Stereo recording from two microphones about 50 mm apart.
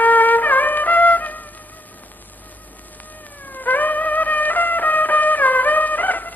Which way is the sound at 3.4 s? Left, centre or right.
Left.